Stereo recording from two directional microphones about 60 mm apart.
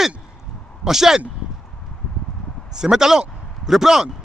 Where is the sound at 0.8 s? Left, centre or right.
Centre.